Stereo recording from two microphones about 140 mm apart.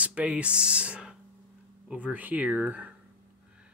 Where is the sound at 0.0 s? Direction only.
10° right (ahead or behind).